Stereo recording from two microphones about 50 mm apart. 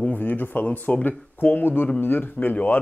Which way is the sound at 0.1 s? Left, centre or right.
Left.